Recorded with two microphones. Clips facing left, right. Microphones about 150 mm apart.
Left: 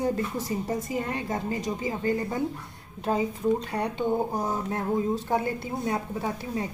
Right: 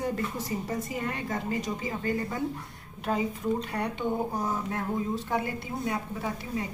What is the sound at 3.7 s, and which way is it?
A woman's voice, 30° left (ahead or behind).